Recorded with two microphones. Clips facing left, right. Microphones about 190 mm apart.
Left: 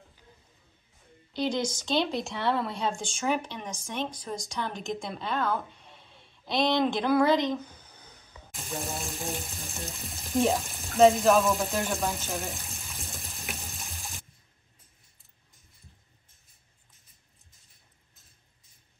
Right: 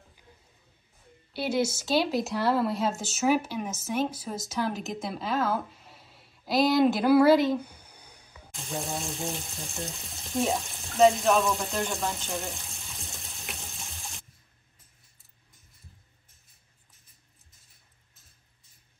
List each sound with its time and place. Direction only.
1.3 s speech: 10° right (ahead or behind)
8.5 s speech: centre (ahead or behind)